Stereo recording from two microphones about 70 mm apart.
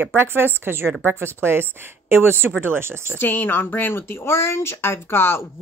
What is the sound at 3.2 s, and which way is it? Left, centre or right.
A woman's voice, left.